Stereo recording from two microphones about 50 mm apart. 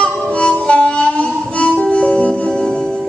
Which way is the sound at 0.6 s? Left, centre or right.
Centre.